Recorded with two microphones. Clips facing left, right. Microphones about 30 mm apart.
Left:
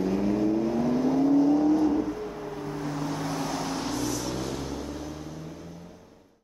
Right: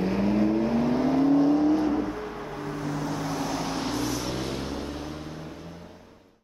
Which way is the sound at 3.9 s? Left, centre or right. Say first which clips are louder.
Right 1 dB; right.